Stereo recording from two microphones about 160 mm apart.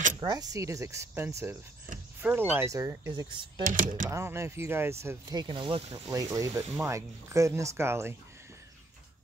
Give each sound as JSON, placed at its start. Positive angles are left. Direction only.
{"t": 0.2, "sound": "speech", "side_deg": -25}
{"t": 3.2, "sound": "speech", "side_deg": -25}
{"t": 3.6, "sound": "speech", "side_deg": -55}
{"t": 4.1, "sound": "speech", "side_deg": -15}
{"t": 5.3, "sound": "speech", "side_deg": -30}
{"t": 6.1, "sound": "speech", "side_deg": -20}